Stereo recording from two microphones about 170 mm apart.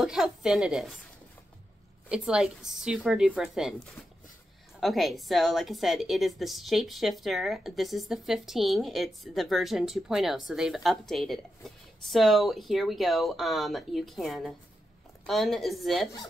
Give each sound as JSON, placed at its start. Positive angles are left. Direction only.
{"t": 0.0, "sound": "a woman's voice", "side_deg": -5}
{"t": 2.0, "sound": "a woman's voice", "side_deg": -5}
{"t": 4.7, "sound": "a woman's voice", "side_deg": 0}